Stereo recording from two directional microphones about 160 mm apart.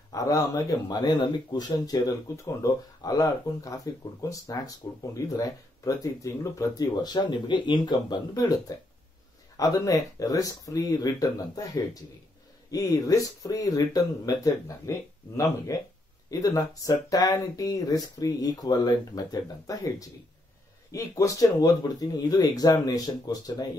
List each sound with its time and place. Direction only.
0.1 s speech: 20° left (ahead or behind)